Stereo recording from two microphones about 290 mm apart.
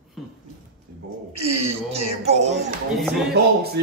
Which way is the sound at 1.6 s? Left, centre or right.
Right.